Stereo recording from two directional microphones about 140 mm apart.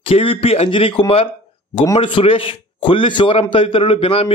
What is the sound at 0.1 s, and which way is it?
A man's voice, 40° left (ahead or behind).